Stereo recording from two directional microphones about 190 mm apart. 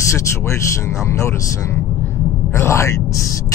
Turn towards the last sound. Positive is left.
turn(degrees=15)  # may be behind; listen again after turning